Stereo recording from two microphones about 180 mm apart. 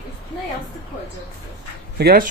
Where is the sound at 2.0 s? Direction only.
55° right (ahead or behind).